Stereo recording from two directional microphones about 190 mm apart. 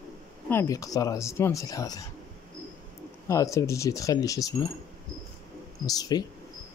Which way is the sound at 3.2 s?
15° left (ahead or behind).